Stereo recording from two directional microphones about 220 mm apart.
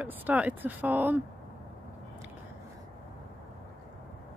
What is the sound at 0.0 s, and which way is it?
Speech, 5° right (ahead or behind).